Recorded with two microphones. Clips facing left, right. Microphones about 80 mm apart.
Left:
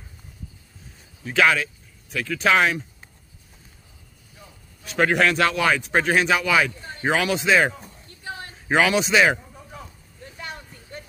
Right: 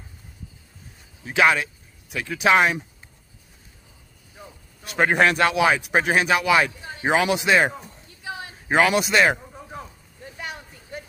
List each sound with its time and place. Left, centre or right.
1.2 s speech: centre
4.9 s a man's voice: right
5.4 s speech: centre
10.4 s vehicle: centre